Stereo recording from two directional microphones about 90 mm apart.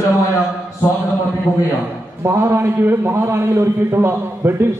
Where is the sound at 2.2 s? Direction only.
30° right (ahead or behind).